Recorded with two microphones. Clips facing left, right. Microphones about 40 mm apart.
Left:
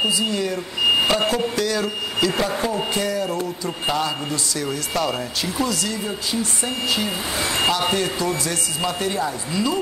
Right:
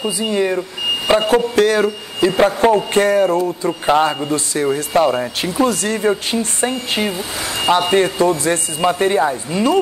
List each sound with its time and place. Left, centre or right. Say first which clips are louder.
0.3 s speech: right 6 dB; right
1.3 s speech: right 8 dB; right